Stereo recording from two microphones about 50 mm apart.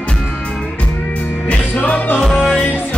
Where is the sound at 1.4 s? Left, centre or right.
Left.